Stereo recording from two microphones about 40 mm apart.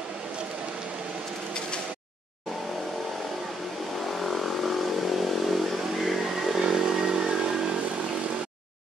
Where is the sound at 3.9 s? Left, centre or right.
Centre; by 8.4 s right.